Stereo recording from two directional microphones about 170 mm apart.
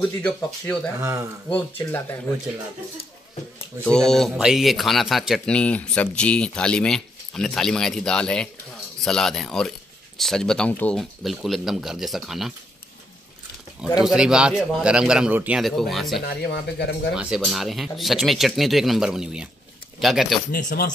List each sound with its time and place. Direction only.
0.0 s speech: 5° left (ahead or behind)
3.8 s speech: 5° left (ahead or behind)
14.0 s speech: 5° right (ahead or behind)
16.3 s speech: 80° left
17.1 s speech: 5° right (ahead or behind)
20.5 s speech: 65° left (ahead or behind)